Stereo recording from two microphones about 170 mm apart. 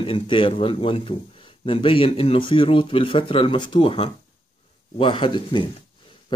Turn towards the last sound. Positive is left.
turn(degrees=30)  # may be behind; listen again after turning